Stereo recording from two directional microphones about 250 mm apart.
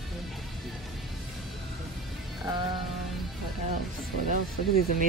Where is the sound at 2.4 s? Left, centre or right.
Centre.